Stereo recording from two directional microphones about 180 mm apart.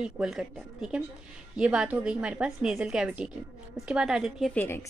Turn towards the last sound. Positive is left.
turn(degrees=0)  # may be behind; listen again after turning